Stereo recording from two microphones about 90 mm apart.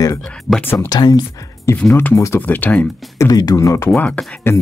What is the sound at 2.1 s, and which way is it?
Speech, 35° left (ahead or behind).